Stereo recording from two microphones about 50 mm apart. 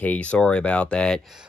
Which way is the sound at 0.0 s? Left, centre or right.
Left.